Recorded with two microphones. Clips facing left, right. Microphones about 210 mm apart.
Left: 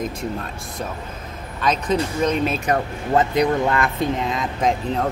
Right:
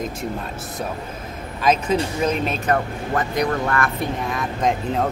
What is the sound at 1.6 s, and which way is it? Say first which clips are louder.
Speech: right 2 dB; 10° right (ahead or behind).